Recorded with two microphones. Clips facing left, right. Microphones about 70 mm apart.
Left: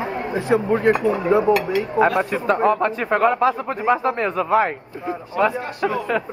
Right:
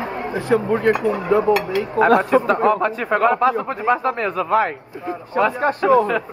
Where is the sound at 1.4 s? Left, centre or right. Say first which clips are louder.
Even; centre.